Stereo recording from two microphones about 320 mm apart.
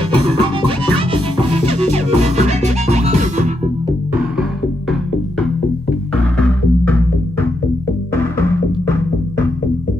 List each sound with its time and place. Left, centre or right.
0.1 s music: centre
6.3 s music: centre